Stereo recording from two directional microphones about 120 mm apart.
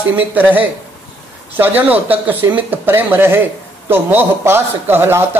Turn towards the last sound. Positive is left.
turn(degrees=-20)  # may be behind; listen again after turning